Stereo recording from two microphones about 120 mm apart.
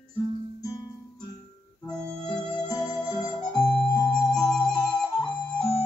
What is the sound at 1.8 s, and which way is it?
Music, 5° left (ahead or behind).